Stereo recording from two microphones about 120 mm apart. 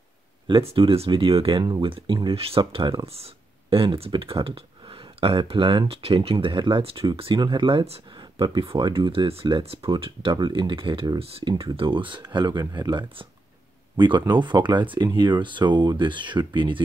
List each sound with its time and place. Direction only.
0.5 s speech: 50° right (ahead or behind)
2.3 s speech: 55° right (ahead or behind)
2.7 s speech: 45° right (ahead or behind)